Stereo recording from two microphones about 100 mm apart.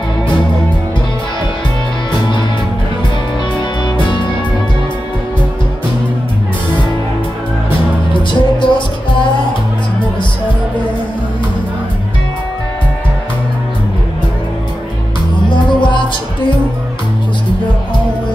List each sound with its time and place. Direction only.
8.1 s music: 55° left (ahead or behind)
15.5 s music: 55° left (ahead or behind)